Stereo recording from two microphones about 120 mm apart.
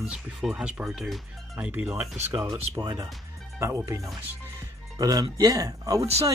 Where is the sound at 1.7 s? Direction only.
15° right (ahead or behind).